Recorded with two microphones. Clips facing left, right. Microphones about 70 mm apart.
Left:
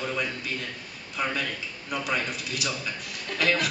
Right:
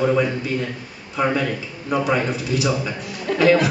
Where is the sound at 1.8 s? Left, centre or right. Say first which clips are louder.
Right 11 dB; right.